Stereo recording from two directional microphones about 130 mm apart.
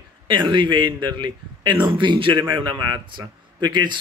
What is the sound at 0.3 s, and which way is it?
Speech, 35° right (ahead or behind).